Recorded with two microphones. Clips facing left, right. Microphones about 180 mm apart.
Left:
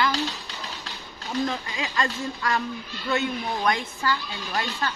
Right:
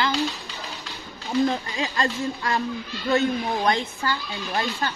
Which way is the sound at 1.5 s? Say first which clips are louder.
Right 3 dB; 30° right (ahead or behind).